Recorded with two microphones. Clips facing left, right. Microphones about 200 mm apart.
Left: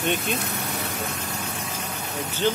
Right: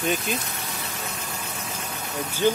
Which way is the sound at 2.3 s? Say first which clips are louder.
Right 2 dB; 10° right (ahead or behind).